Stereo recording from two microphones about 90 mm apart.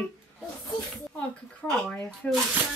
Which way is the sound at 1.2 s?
15° left (ahead or behind).